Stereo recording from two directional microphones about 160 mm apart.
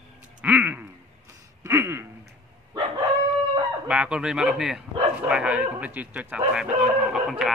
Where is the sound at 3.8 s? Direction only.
5° right (ahead or behind).